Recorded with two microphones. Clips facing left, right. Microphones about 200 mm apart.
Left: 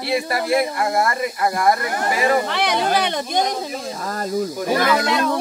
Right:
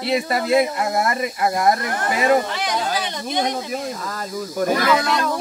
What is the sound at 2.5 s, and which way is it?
Speech, 65° left (ahead or behind).